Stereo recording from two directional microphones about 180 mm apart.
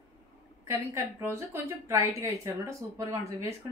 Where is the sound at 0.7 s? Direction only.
15° right (ahead or behind).